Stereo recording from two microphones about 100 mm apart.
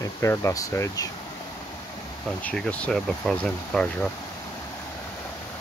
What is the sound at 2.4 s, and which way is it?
Speech, 10° left (ahead or behind).